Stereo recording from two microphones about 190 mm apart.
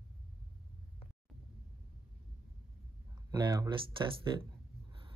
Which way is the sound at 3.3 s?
20° right (ahead or behind).